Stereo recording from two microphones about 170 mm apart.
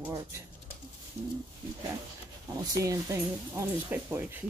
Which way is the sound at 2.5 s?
20° right (ahead or behind).